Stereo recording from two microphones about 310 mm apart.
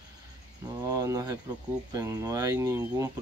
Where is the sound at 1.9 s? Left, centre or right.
Centre.